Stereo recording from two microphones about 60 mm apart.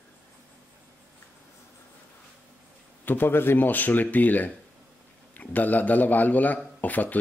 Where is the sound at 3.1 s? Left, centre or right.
Left.